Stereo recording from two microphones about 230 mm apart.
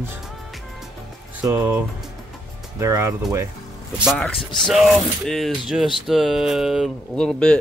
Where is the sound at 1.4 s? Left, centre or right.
Centre.